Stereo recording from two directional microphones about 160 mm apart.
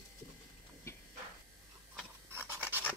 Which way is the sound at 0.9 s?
15° left (ahead or behind).